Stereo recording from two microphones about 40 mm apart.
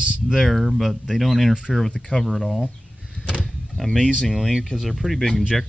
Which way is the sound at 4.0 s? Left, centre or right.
Left.